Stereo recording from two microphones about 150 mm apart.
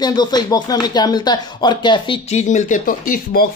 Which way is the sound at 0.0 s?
25° left (ahead or behind).